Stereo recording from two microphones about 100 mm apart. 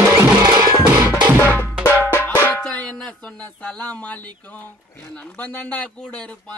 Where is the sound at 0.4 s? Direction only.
45° right (ahead or behind).